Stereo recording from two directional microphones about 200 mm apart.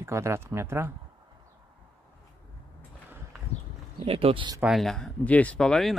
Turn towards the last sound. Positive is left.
turn(degrees=0)  # may be behind; listen again after turning